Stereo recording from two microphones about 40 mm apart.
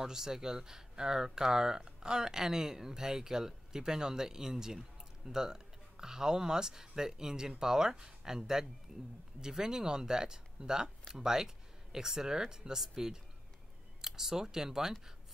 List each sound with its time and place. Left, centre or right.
0.0 s speech: centre